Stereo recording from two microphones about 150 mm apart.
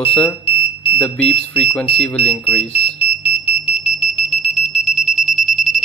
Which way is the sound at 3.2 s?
10° right (ahead or behind).